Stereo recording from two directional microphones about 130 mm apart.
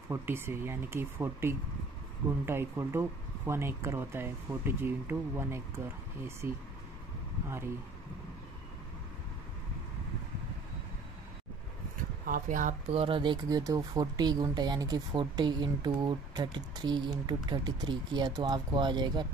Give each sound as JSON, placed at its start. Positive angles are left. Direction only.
{"t": 0.1, "sound": "speech", "side_deg": -20}
{"t": 12.3, "sound": "speech", "side_deg": -85}
{"t": 12.8, "sound": "speech", "side_deg": -50}